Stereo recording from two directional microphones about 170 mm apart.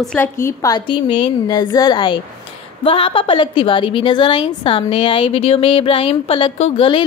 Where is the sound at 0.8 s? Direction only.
30° left (ahead or behind).